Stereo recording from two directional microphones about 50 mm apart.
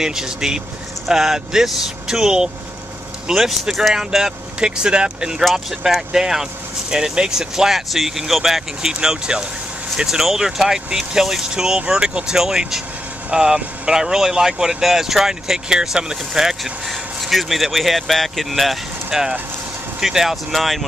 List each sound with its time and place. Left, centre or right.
0.0 s speech: centre
5.4 s speech: centre
19.0 s speech: centre